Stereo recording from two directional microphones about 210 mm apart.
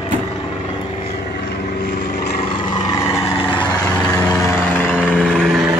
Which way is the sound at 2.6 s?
20° left (ahead or behind).